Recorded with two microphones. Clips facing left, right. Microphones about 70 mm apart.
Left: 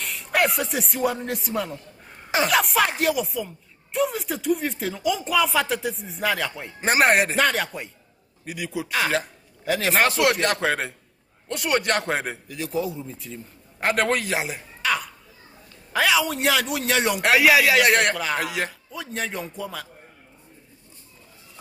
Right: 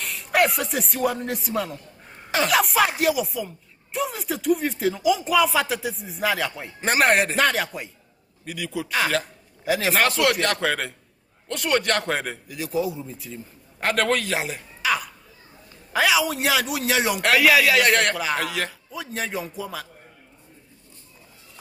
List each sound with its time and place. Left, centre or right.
0.0 s speech: centre
6.8 s a man's voice: centre
7.3 s speech: centre
8.5 s a man's voice: centre
9.7 s a man's voice: centre
9.9 s a man's voice: centre
12.4 s speech: centre
13.7 s a man's voice: centre
14.8 s a sound: centre
15.9 s speech: centre
17.2 s a man's voice: centre
18.1 s speech: centre
18.4 s a man's voice: centre
18.9 s speech: centre